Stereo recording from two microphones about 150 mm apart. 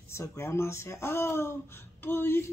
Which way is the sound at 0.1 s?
20° left (ahead or behind).